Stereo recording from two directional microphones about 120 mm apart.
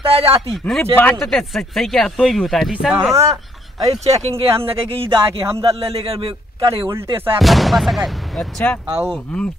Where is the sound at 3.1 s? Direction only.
25° right (ahead or behind).